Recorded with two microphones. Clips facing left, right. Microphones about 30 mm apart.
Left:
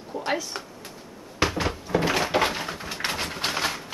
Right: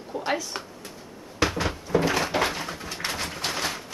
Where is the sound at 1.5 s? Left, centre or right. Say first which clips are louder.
Left 1 dB; centre.